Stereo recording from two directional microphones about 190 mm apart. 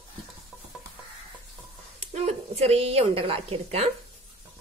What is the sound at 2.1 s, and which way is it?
Speech, 35° right (ahead or behind).